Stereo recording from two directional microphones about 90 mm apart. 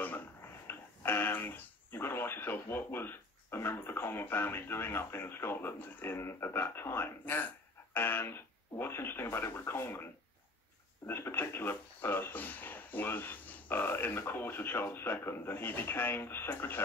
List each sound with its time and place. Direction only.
0.7 s radio: 25° left (ahead or behind)
11.1 s speech: 25° left (ahead or behind)